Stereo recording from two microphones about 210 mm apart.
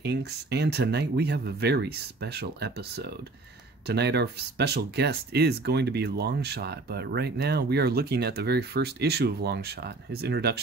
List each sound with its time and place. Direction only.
0.0 s speech: 50° right (ahead or behind)